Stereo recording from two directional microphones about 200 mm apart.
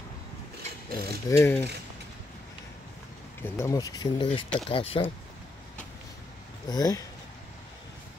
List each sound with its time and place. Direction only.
0.9 s speech: 25° left (ahead or behind)
1.4 s mechanisms: 15° left (ahead or behind)
3.4 s speech: 15° left (ahead or behind)
6.7 s speech: 20° left (ahead or behind)